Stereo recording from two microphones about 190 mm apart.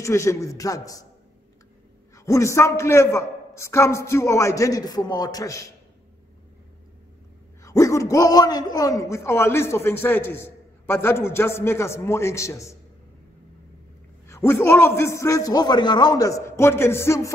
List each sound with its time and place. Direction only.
0.0 s a man's voice: 15° left (ahead or behind)
2.1 s a man's voice: 15° left (ahead or behind)
7.6 s a man's voice: 15° left (ahead or behind)
14.2 s a man's voice: 15° left (ahead or behind)